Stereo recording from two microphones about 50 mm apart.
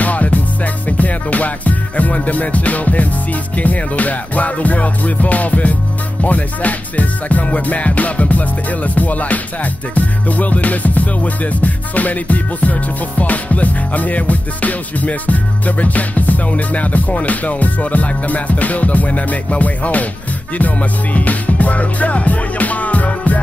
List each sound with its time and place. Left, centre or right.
0.0 s music: left